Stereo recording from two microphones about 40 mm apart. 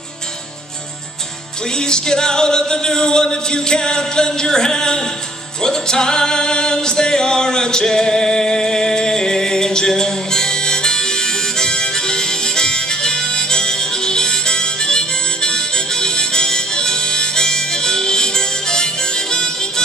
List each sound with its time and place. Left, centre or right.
1.8 s music: centre